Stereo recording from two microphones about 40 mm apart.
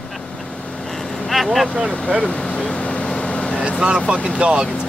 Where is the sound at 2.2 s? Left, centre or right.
Left.